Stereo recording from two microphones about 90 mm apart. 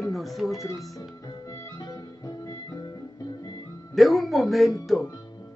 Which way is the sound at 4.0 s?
Centre (ahead or behind).